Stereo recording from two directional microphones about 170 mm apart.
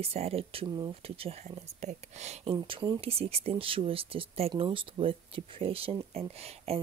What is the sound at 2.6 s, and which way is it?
Speech, 25° right (ahead or behind).